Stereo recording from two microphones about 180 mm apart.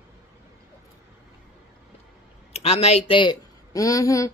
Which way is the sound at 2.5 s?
35° left (ahead or behind).